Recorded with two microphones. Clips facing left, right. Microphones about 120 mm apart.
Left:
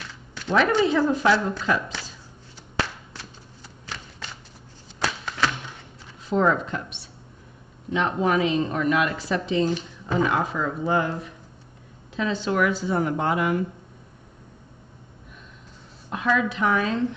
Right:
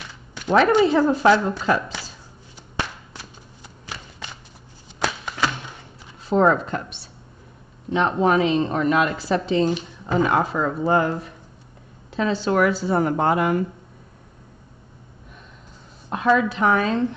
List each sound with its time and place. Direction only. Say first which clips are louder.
0.5 s a woman's voice: right 4 dB; 50° right (ahead or behind)
2.5 s a sound: left 1 dB; 15° right (ahead or behind)
6.2 s a woman's voice: right 4 dB; 40° right (ahead or behind)
7.9 s a woman's voice: right 4 dB; 30° right (ahead or behind)
16.1 s speech: right 4 dB; 40° right (ahead or behind)